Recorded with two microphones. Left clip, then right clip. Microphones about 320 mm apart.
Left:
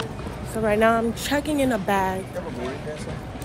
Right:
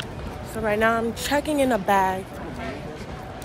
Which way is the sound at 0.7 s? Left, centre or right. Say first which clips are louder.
Left 2 dB; centre.